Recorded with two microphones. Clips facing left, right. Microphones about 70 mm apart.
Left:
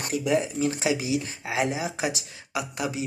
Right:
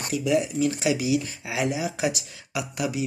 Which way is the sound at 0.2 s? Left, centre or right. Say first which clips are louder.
Right 2 dB; left.